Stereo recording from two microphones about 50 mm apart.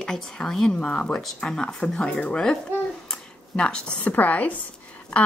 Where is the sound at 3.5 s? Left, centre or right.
Centre.